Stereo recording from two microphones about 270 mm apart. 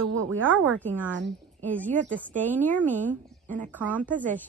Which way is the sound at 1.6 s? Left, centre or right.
Centre.